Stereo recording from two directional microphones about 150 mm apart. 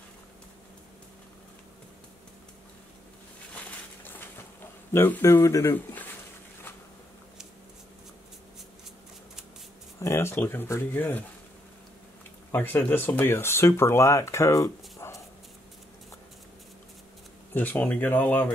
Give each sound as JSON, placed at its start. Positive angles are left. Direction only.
{"t": 4.9, "sound": "speech", "side_deg": 15}
{"t": 9.9, "sound": "speech", "side_deg": 20}
{"t": 12.4, "sound": "speech", "side_deg": 15}
{"t": 17.6, "sound": "speech", "side_deg": 10}